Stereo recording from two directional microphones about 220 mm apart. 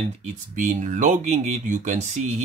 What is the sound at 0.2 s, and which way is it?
Speech, 35° right (ahead or behind).